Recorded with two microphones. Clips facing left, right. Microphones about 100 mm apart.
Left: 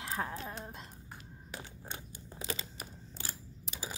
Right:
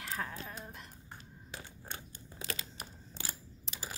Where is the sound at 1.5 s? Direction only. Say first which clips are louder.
Left 1 dB; 15° left (ahead or behind).